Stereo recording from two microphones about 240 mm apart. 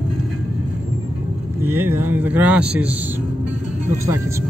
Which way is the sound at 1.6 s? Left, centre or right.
Centre.